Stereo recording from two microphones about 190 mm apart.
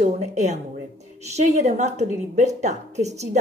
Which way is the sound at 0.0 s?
35° right (ahead or behind).